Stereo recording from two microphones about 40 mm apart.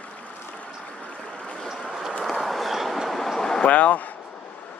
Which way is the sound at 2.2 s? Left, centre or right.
Centre.